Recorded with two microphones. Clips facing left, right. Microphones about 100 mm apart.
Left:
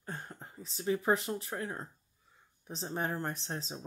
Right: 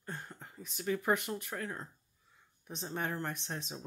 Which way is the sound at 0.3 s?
30° left (ahead or behind).